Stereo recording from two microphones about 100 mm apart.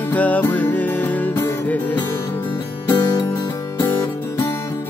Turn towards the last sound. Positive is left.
turn(degrees=25)  # may be behind; listen again after turning